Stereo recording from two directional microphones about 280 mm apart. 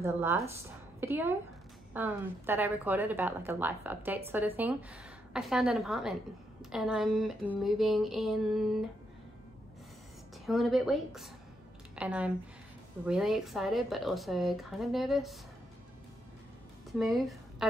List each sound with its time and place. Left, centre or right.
0.0 s a woman's voice: centre
10.4 s a woman's voice: centre
17.0 s a woman's voice: centre